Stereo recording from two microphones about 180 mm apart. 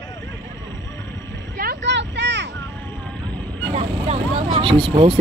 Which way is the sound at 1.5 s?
65° right (ahead or behind).